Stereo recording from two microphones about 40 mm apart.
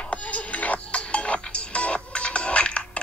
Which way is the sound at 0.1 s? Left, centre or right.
Left.